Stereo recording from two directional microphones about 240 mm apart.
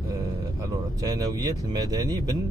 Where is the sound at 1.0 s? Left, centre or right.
Centre.